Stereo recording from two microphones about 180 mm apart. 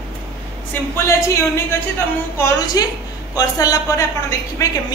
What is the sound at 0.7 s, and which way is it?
Speech, 15° left (ahead or behind).